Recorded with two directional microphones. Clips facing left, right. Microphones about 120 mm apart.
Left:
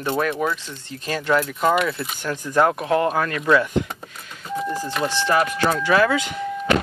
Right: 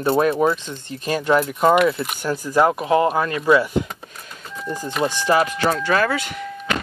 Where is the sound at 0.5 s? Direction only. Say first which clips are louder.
Right 3 dB; 20° right (ahead or behind).